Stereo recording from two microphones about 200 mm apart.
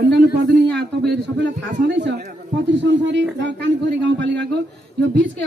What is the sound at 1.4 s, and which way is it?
Speech, 60° right (ahead or behind).